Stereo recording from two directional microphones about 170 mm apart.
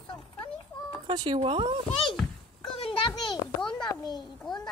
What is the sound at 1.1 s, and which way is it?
Speech, 25° right (ahead or behind).